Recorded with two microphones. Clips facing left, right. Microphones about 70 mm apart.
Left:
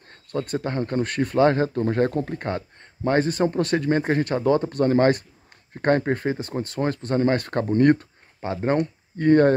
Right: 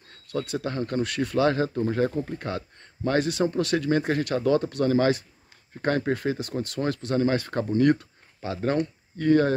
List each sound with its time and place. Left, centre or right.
0.1 s speech: left
1.8 s speech: left
2.3 s speech: left